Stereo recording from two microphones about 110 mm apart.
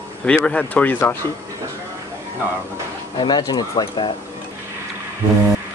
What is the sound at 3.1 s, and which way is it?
Speech, 40° left (ahead or behind).